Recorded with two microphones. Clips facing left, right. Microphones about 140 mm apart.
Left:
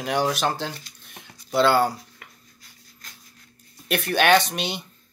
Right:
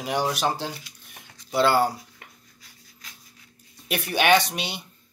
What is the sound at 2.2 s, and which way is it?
Dishes, 30° right (ahead or behind).